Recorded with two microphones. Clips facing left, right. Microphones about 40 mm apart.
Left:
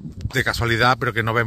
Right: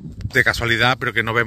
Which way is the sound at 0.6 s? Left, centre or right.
Right.